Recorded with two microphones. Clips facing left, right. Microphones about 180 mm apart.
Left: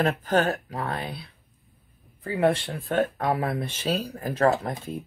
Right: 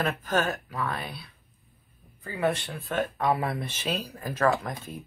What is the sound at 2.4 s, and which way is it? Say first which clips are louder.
Speech: left 4 dB; 35° left (ahead or behind).